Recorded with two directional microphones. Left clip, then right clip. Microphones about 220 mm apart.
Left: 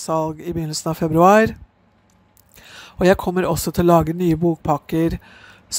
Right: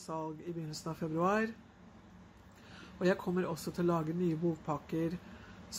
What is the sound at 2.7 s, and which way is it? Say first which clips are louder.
Speech: left 17 dB; 45° left (ahead or behind).